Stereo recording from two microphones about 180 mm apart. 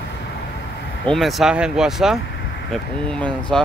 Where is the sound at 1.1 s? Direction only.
Centre (ahead or behind).